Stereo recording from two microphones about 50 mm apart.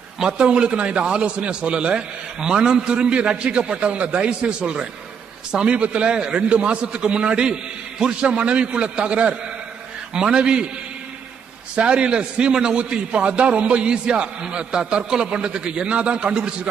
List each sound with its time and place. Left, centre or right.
0.2 s a man's voice: centre
11.7 s a man's voice: right